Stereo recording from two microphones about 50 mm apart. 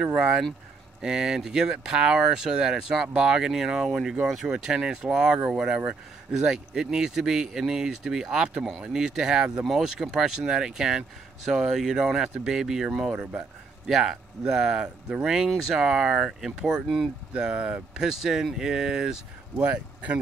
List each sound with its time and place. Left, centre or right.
0.0 s speech: centre
17.3 s speech: centre
19.5 s speech: right